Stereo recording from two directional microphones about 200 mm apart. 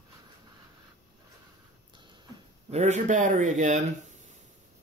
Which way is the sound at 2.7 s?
35° right (ahead or behind).